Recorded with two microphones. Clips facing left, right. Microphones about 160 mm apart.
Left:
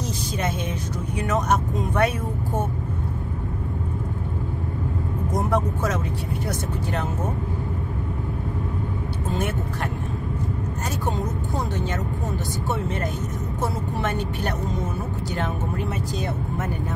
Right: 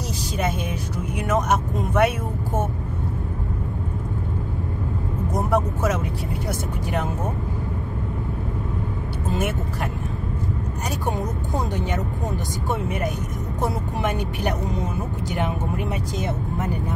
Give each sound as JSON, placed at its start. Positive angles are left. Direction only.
{"t": 1.2, "sound": "speech", "side_deg": -10}
{"t": 5.5, "sound": "speech", "side_deg": -10}
{"t": 11.1, "sound": "speech", "side_deg": -15}